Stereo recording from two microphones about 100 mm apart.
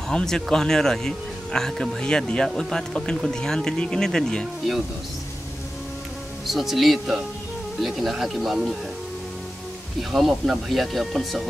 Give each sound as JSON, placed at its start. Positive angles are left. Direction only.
{"t": 0.1, "sound": "speech", "side_deg": 5}
{"t": 6.4, "sound": "speech", "side_deg": 0}
{"t": 10.1, "sound": "speech", "side_deg": -5}